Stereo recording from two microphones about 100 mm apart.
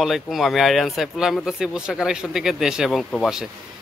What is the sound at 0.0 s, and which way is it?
Speech, centre (ahead or behind).